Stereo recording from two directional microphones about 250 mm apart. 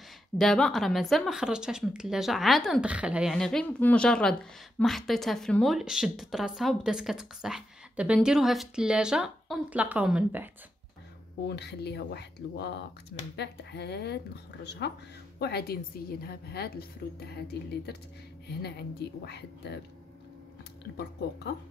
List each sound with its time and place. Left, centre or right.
0.4 s a woman's voice: centre
11.4 s a woman's voice: left
20.9 s a woman's voice: left